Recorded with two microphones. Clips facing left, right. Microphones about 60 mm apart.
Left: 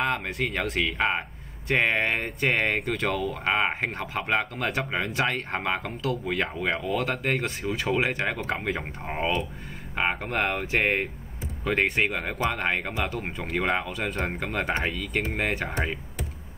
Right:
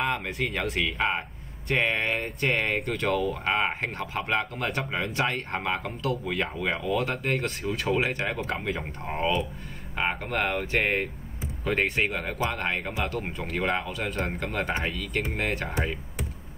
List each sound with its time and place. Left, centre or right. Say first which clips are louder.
0.0 s speech: left 1 dB; centre
1.9 s speech: left 2 dB; left
2.2 s speech: left 2 dB; centre
9.0 s speech: right 1 dB; centre
12.4 s speech: left 5 dB; centre
13.2 s speech: left 1 dB; centre